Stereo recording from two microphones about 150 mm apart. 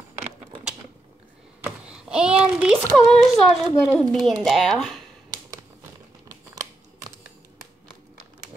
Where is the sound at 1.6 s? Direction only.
5° right (ahead or behind).